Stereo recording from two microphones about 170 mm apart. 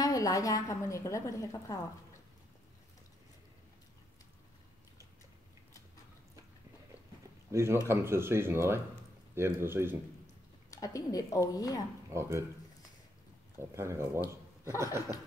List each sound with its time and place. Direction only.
0.0 s a woman's voice: 20° left (ahead or behind)
7.5 s speech: 15° right (ahead or behind)
10.7 s a woman's voice: 20° left (ahead or behind)
12.1 s speech: 15° right (ahead or behind)
13.6 s a man's voice: 15° right (ahead or behind)